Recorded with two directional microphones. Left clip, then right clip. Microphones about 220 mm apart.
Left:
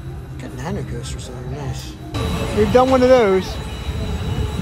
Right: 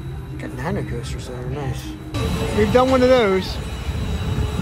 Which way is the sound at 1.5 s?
5° left (ahead or behind).